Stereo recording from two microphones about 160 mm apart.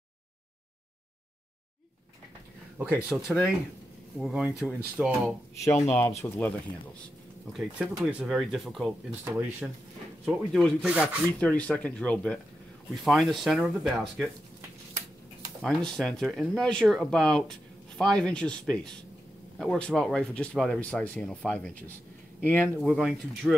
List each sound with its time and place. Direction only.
2.8 s speech: 5° right (ahead or behind)
5.6 s speech: 15° left (ahead or behind)
7.5 s speech: 5° right (ahead or behind)
10.2 s speech: centre (ahead or behind)
11.2 s speech: 10° left (ahead or behind)
15.6 s speech: centre (ahead or behind)